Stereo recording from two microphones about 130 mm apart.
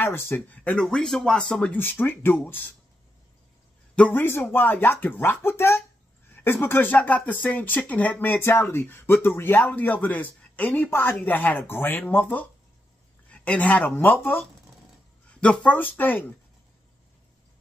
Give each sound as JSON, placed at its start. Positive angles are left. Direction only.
{"t": 0.0, "sound": "speech", "side_deg": 15}
{"t": 3.9, "sound": "speech", "side_deg": 10}